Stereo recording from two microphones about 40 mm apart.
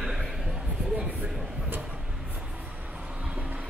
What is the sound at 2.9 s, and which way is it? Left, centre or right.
Train, right.